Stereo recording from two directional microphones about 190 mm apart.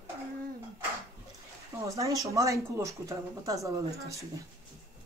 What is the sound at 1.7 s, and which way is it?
Speech, 15° right (ahead or behind).